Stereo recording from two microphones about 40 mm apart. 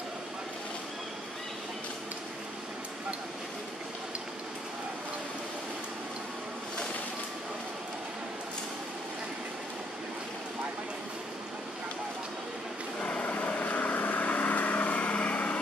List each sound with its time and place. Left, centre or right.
13.0 s vehicle: left
13.3 s vehicle: left